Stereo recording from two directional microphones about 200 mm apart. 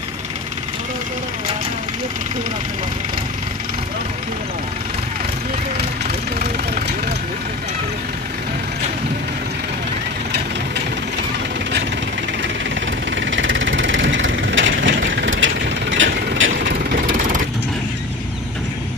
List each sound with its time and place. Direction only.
13.2 s vehicle: 70° right (ahead or behind)